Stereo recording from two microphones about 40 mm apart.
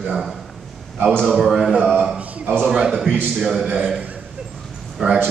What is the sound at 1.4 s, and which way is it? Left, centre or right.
Speech, centre.